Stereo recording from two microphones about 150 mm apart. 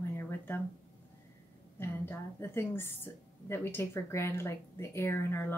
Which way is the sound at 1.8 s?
15° left (ahead or behind).